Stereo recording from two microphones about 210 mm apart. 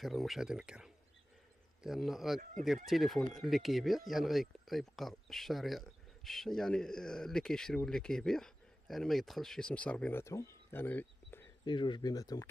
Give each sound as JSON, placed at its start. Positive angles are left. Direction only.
{"t": 0.0, "sound": "speech", "side_deg": 0}
{"t": 11.6, "sound": "speech", "side_deg": 20}